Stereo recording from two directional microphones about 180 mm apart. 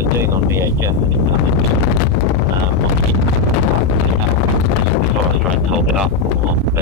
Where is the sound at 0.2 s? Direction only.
15° right (ahead or behind).